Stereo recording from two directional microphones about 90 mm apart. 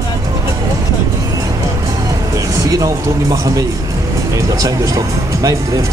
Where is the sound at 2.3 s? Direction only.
40° right (ahead or behind).